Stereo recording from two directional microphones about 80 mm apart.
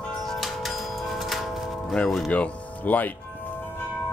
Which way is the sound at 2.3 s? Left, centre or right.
Centre.